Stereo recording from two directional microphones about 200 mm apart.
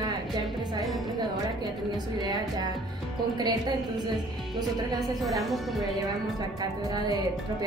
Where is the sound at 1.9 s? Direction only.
20° right (ahead or behind).